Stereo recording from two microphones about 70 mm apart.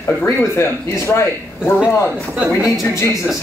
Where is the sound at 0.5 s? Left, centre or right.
Left.